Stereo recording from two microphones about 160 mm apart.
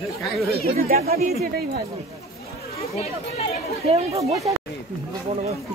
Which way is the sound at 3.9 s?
40° right (ahead or behind).